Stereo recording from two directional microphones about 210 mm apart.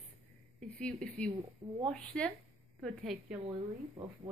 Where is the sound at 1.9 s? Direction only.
Centre (ahead or behind).